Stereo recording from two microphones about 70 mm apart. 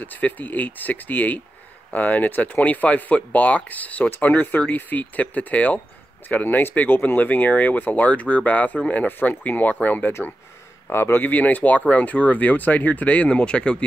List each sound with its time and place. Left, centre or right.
0.0 s speech: left
10.9 s speech: left; by 13.8 s centre